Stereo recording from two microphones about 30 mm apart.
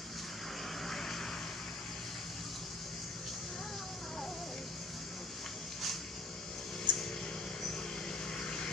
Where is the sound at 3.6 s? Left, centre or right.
Centre.